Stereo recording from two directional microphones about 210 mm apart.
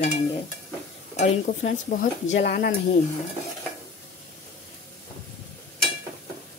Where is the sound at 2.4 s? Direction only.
45° left (ahead or behind).